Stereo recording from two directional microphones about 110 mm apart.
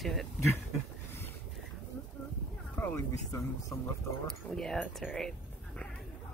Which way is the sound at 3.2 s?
30° left (ahead or behind).